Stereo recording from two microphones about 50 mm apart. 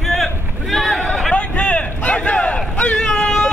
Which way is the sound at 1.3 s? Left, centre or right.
Left.